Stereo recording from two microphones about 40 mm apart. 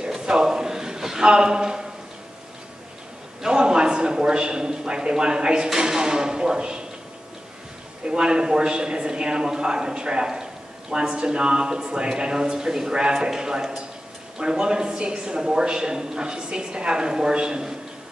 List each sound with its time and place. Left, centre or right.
0.0 s a sound: centre
3.4 s a man's voice: right
8.1 s a man's voice: right